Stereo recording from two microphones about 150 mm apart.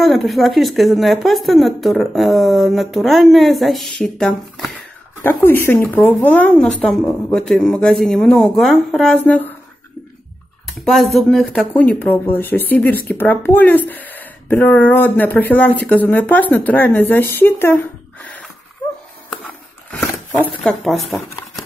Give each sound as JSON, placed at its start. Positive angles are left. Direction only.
{"t": 0.0, "sound": "a woman's voice", "side_deg": 0}
{"t": 10.7, "sound": "speech", "side_deg": 0}
{"t": 19.9, "sound": "a sound", "side_deg": 10}
{"t": 20.8, "sound": "a woman's voice", "side_deg": 0}